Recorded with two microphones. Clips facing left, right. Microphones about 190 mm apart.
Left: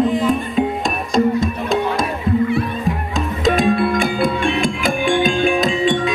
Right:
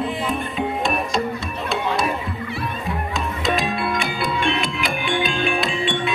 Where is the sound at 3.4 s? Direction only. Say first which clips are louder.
Left 8 dB; 50° left (ahead or behind).